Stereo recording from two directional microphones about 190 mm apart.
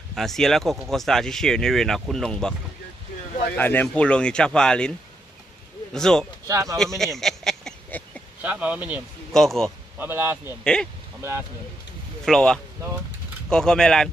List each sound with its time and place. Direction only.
0.1 s speech: centre (ahead or behind)
3.5 s speech: 10° left (ahead or behind)
5.9 s speech: 5° left (ahead or behind)
6.4 s a man's voice: 15° right (ahead or behind)
7.2 s a sound: centre (ahead or behind)
8.4 s a man's voice: 5° right (ahead or behind)
9.9 s a man's voice: 10° right (ahead or behind)
10.6 s speech: 5° left (ahead or behind)
12.3 s speech: 5° left (ahead or behind)